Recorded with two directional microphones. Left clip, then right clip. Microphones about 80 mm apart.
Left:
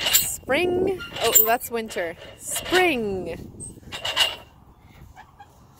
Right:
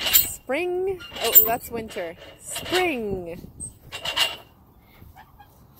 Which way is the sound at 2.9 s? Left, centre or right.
Left.